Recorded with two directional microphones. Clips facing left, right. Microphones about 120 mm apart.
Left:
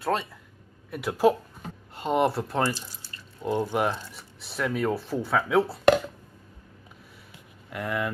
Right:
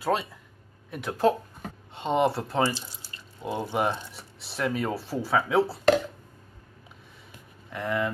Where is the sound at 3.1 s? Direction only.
20° right (ahead or behind).